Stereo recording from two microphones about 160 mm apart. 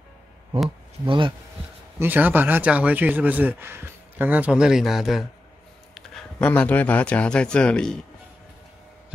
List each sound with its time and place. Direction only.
1.0 s a man's voice: 30° right (ahead or behind)
2.0 s a man's voice: 10° right (ahead or behind); by 8.0 s 5° left (ahead or behind)